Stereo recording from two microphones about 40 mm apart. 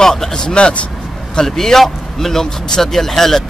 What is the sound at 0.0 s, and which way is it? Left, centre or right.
Speech, centre.